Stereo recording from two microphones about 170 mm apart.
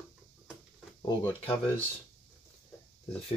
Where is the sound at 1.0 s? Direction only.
25° left (ahead or behind).